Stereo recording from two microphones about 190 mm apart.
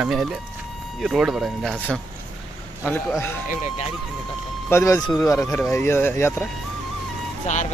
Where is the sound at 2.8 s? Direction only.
10° left (ahead or behind).